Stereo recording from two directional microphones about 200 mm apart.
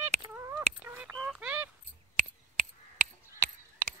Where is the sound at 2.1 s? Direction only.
40° right (ahead or behind).